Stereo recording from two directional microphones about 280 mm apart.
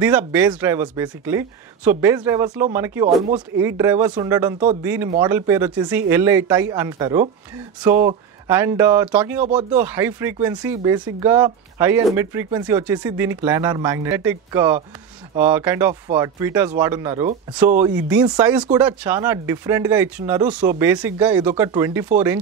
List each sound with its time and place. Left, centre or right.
0.3 s speech: centre
9.5 s speech: right
9.8 s speech: centre